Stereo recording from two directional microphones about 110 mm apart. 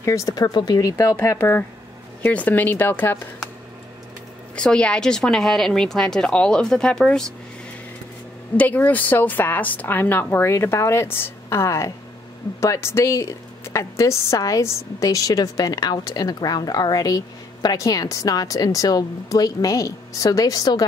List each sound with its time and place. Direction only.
0.0 s a woman's voice: 30° left (ahead or behind)
4.6 s speech: 10° left (ahead or behind)
8.5 s a woman's voice: 15° left (ahead or behind); by 20.8 s 35° left (ahead or behind)